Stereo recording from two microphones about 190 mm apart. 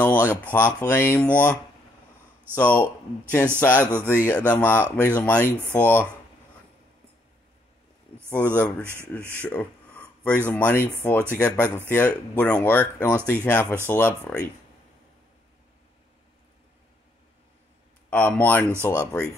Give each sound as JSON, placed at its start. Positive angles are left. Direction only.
{"t": 0.0, "sound": "speech", "side_deg": 10}
{"t": 8.3, "sound": "speech", "side_deg": 10}
{"t": 18.1, "sound": "speech", "side_deg": 10}